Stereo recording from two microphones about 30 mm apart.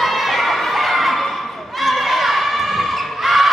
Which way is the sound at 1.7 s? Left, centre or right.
Centre.